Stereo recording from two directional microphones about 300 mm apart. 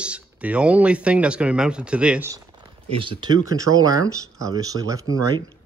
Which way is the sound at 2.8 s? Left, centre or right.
Centre.